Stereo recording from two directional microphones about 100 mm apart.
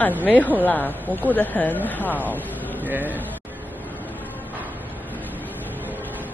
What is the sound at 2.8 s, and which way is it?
Speech, 20° right (ahead or behind).